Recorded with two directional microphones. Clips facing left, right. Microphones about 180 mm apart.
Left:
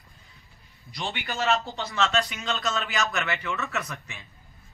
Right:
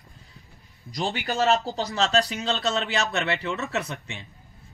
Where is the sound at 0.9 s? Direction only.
40° right (ahead or behind).